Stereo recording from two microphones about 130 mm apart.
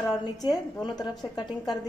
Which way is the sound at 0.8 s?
35° left (ahead or behind).